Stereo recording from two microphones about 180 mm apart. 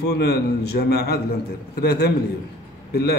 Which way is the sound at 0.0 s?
65° left (ahead or behind).